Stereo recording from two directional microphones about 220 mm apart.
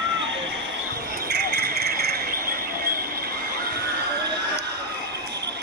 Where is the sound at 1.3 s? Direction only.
50° right (ahead or behind).